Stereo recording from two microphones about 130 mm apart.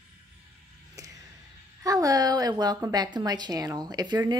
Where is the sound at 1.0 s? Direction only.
25° right (ahead or behind).